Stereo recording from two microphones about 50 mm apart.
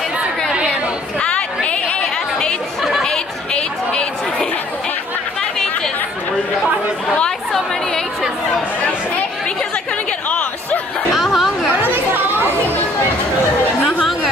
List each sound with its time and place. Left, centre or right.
1.2 s chatter: centre
2.8 s chatter: centre
3.1 s chatter: centre
11.1 s chatter: centre
11.7 s chatter: right